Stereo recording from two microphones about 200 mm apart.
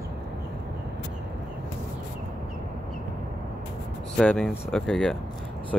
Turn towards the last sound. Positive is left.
turn(degrees=5)  # may be behind; listen again after turning